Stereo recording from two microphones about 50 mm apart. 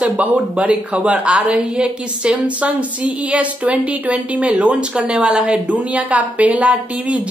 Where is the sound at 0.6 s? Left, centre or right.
Right.